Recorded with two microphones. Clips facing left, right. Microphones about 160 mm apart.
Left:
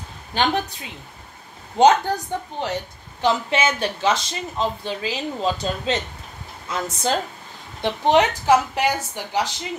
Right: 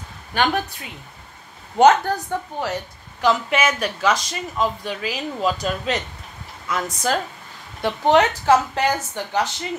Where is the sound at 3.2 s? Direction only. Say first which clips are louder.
Right 1 dB; 25° left (ahead or behind).